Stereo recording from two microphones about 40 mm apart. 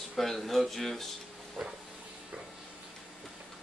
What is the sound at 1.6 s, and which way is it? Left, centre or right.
Hiss, right.